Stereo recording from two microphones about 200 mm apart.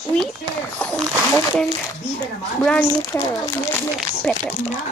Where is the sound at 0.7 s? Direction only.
5° left (ahead or behind).